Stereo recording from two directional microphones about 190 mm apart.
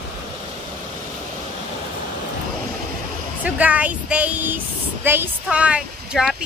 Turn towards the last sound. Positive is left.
turn(degrees=-5)  # may be behind; listen again after turning